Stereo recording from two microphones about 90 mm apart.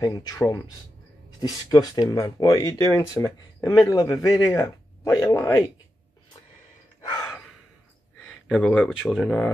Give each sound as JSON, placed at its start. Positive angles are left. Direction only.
{"t": 0.0, "sound": "speech", "side_deg": 45}
{"t": 3.9, "sound": "speech", "side_deg": 40}
{"t": 8.2, "sound": "a sound", "side_deg": 10}
{"t": 8.8, "sound": "speech", "side_deg": 0}